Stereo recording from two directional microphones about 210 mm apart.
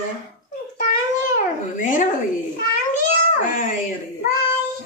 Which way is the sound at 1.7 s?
40° left (ahead or behind).